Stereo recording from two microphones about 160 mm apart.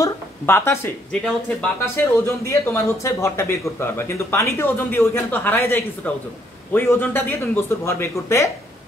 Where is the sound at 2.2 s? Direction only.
15° left (ahead or behind).